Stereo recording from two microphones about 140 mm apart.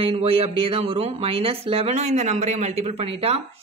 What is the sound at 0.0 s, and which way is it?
Speech, 45° right (ahead or behind).